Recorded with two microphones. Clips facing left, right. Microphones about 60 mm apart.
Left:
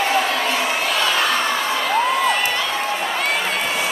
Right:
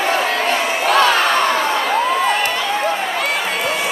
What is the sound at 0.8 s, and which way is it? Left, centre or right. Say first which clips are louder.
Crowd: right 7 dB; right.